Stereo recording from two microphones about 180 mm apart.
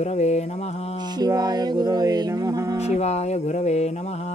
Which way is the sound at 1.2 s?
20° right (ahead or behind).